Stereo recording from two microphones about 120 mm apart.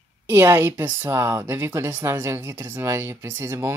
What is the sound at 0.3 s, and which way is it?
Speech, 20° right (ahead or behind).